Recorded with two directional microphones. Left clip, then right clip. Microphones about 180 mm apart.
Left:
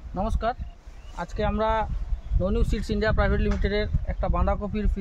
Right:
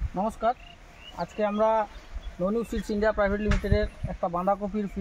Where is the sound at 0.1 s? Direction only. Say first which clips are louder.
Right 1 dB; 5° right (ahead or behind).